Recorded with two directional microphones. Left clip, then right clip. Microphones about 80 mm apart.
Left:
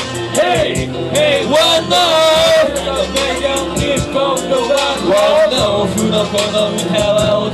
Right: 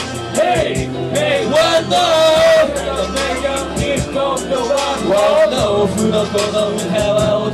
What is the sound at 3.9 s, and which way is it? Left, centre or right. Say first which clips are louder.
Music: left 2 dB; left.